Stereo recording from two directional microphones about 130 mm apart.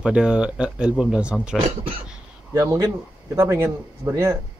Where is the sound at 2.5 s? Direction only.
25° right (ahead or behind).